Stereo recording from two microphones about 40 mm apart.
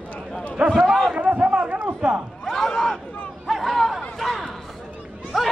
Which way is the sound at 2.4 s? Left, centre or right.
Centre.